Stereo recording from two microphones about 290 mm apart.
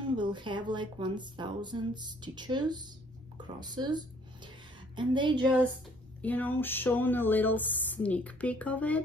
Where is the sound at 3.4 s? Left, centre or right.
Centre.